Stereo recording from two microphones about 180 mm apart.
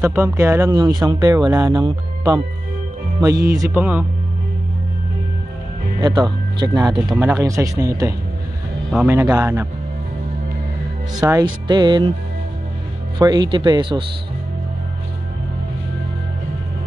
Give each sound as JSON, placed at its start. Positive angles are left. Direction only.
{"t": 0.0, "sound": "speech", "side_deg": -15}
{"t": 5.9, "sound": "speech", "side_deg": -25}
{"t": 8.9, "sound": "speech", "side_deg": -10}
{"t": 11.2, "sound": "speech", "side_deg": -15}
{"t": 11.6, "sound": "speech", "side_deg": -25}
{"t": 13.2, "sound": "speech", "side_deg": -25}